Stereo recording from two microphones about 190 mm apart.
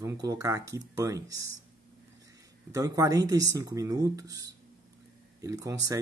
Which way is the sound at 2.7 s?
15° right (ahead or behind).